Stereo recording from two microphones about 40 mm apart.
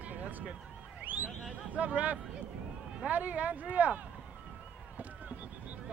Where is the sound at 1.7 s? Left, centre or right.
Right.